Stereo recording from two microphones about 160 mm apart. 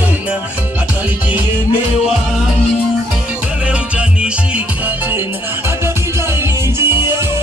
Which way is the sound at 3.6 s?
5° right (ahead or behind).